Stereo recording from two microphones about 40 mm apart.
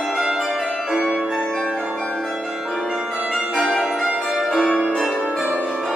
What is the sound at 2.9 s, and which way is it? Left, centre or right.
Music, centre.